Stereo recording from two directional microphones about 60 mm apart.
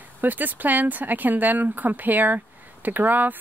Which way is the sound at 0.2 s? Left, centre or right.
Right.